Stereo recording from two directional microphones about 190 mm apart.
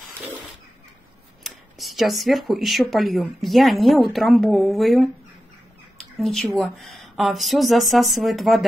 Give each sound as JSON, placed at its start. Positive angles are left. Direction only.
{"t": 1.4, "sound": "speech", "side_deg": 0}
{"t": 6.2, "sound": "speech", "side_deg": 5}